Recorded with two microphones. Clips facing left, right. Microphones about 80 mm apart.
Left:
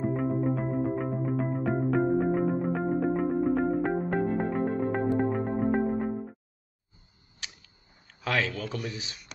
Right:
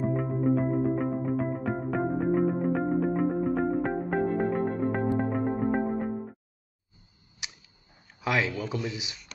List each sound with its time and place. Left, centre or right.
0.1 s music: centre
7.4 s a sound: centre
8.1 s speech: centre